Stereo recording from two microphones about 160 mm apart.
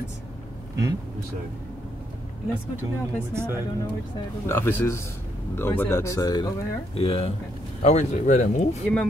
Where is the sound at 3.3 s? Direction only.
15° right (ahead or behind).